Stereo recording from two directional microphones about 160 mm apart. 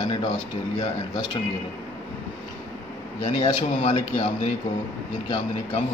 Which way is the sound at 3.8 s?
35° left (ahead or behind).